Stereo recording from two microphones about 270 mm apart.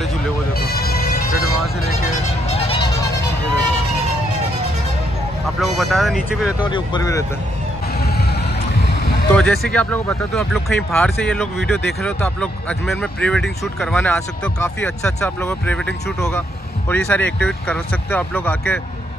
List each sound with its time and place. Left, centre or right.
0.6 s music: left
2.0 s music: left
5.6 s speech: centre
6.6 s speech: centre
9.3 s speech: centre